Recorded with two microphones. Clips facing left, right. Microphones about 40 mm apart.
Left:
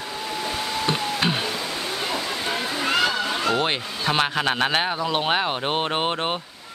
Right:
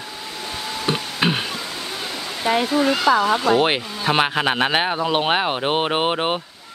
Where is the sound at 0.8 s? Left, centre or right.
Centre.